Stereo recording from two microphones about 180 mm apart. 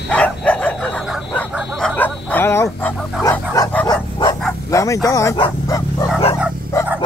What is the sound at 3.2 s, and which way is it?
Dog, 20° left (ahead or behind).